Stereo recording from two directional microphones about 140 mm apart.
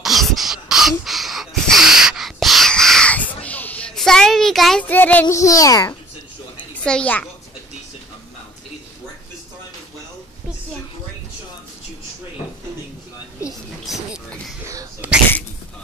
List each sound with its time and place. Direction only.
0.0 s gasp: centre (ahead or behind)
4.8 s child singing: 10° left (ahead or behind)
5.3 s a child's voice: 25° left (ahead or behind)
6.7 s a child's voice: 10° left (ahead or behind)
13.8 s music: centre (ahead or behind)
14.7 s a sound: 20° right (ahead or behind)